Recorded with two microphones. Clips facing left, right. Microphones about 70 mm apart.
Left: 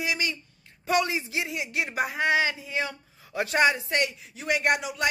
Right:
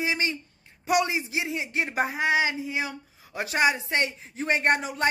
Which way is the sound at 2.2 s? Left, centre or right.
Centre.